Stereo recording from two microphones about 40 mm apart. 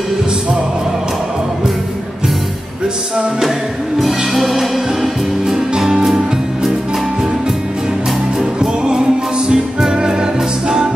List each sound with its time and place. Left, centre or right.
4.0 s music: centre
8.4 s music: centre